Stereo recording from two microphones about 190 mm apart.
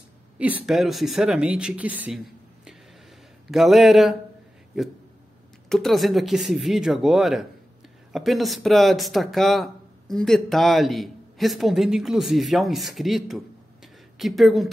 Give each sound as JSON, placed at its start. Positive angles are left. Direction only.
{"t": 0.4, "sound": "speech", "side_deg": -10}